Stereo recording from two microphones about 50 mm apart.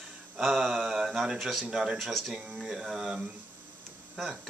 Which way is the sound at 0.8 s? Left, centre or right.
Centre.